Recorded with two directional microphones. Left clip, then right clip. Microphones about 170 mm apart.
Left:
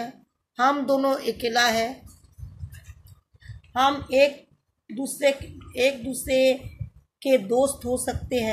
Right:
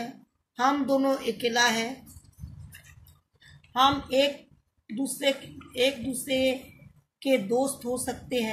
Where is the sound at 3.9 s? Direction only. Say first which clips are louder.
Left 8 dB; 50° left (ahead or behind).